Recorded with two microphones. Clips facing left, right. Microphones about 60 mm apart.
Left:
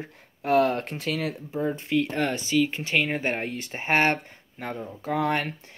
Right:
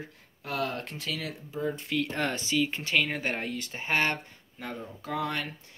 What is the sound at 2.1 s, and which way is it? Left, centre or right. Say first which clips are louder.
Speech: left 4 dB; centre.